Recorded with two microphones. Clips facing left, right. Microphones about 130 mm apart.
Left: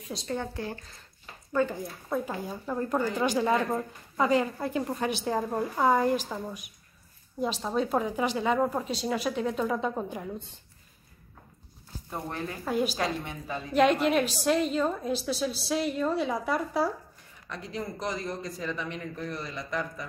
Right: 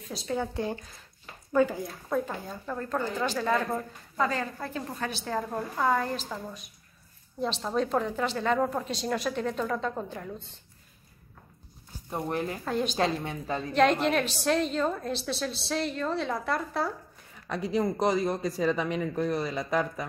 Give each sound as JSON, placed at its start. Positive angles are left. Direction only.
{"t": 0.1, "sound": "a woman's voice", "side_deg": -5}
{"t": 1.5, "sound": "speech", "side_deg": -10}
{"t": 2.0, "sound": "a woman's voice", "side_deg": 10}
{"t": 12.1, "sound": "speech", "side_deg": -25}
{"t": 12.6, "sound": "a woman's voice", "side_deg": 5}
{"t": 17.7, "sound": "speech", "side_deg": -70}